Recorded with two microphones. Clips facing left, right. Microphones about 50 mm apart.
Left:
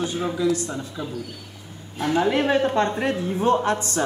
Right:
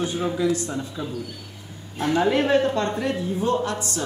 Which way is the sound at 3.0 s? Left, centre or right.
Left.